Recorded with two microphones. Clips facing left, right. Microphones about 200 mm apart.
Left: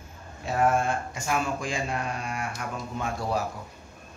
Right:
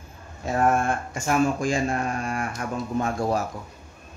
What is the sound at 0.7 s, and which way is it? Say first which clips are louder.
Speech: right 2 dB; 50° right (ahead or behind).